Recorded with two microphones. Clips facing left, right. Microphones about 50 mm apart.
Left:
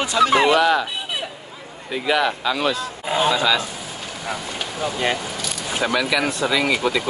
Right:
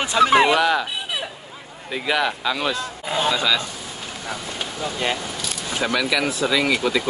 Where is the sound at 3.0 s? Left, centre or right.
Centre.